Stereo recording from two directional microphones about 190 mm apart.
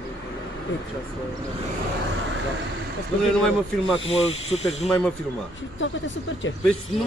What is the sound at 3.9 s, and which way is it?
Speech, 30° left (ahead or behind).